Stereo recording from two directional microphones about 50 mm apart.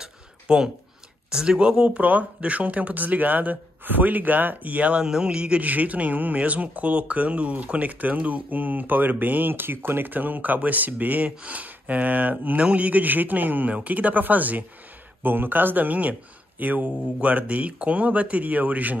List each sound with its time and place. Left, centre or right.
0.0 s a sound: centre
1.3 s speech: centre; by 5.0 s right
5.0 s a man's voice: centre
5.6 s speech: right